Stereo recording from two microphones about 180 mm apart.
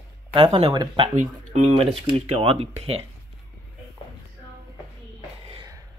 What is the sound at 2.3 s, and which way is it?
Speech, 30° right (ahead or behind).